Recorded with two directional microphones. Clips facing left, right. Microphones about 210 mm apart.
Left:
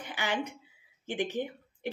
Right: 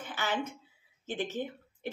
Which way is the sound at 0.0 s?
15° left (ahead or behind).